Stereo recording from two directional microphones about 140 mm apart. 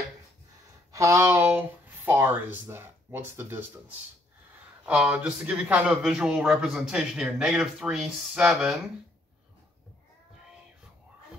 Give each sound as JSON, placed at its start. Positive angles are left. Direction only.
{"t": 0.9, "sound": "speech", "side_deg": -20}
{"t": 4.8, "sound": "a man's voice", "side_deg": -10}